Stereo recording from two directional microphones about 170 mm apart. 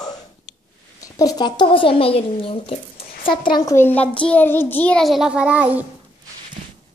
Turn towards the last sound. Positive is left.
turn(degrees=-10)  # may be behind; listen again after turning